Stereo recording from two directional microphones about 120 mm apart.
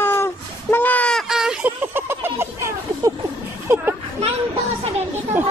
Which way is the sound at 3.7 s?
20° right (ahead or behind).